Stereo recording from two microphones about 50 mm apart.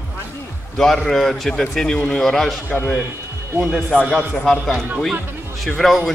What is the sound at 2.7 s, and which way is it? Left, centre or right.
Speech, left.